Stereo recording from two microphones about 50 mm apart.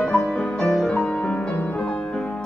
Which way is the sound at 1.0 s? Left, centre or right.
Left.